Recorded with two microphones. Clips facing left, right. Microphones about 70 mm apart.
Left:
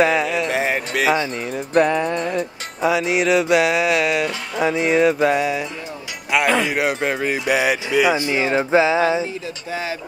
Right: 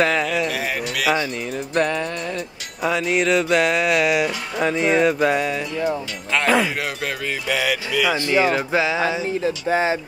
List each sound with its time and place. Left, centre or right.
0.0 s speech: centre
0.5 s a sound: left
1.8 s music: centre
2.1 s speech: left
2.8 s music: centre
6.7 s speech: left
9.2 s a sound: right